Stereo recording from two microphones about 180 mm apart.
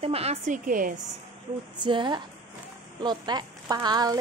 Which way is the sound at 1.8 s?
25° right (ahead or behind).